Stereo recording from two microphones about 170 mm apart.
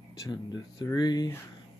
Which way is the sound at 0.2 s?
25° left (ahead or behind).